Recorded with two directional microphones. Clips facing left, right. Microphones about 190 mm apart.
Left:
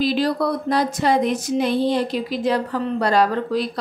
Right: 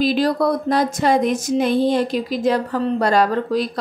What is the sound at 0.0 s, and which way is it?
A woman's voice, 45° right (ahead or behind).